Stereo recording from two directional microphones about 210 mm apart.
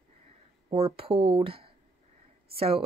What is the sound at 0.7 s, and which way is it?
Speech, 25° right (ahead or behind).